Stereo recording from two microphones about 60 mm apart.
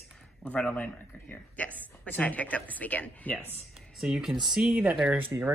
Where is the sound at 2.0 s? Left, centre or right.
Left.